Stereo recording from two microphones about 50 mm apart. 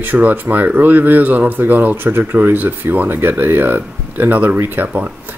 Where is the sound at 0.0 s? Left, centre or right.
Right.